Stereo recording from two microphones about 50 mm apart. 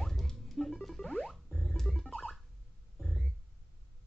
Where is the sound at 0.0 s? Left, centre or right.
Centre.